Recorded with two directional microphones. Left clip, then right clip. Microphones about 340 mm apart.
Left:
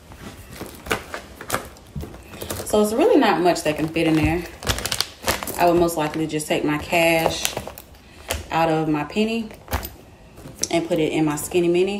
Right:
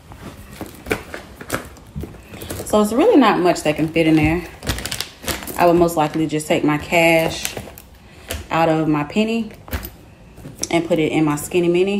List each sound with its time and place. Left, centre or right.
0.6 s a sound: centre
2.7 s speech: centre
4.6 s typewriter: centre
5.6 s speech: centre
8.5 s speech: centre
10.6 s speech: centre